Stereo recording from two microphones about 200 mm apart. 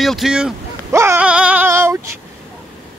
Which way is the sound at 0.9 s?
15° right (ahead or behind).